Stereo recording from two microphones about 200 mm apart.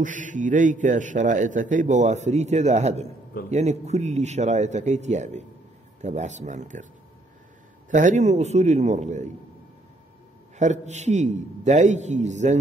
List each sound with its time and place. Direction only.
0.0 s a man's voice: 40° right (ahead or behind)
7.9 s a man's voice: 40° right (ahead or behind)
10.6 s a man's voice: 35° right (ahead or behind)